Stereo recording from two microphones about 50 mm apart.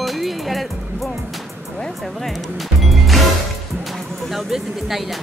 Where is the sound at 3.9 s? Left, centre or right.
Centre.